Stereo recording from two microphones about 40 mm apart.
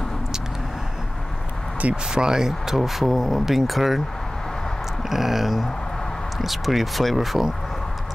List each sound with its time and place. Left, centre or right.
1.8 s speech: right
2.1 s speech: centre
5.1 s speech: centre